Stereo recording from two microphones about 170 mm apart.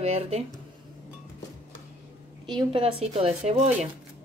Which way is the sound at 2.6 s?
35° right (ahead or behind).